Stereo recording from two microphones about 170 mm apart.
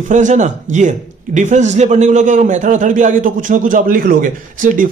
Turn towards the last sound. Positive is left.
turn(degrees=-50)  # may be behind; listen again after turning